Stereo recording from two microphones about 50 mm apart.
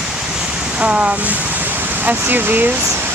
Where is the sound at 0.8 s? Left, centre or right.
Right.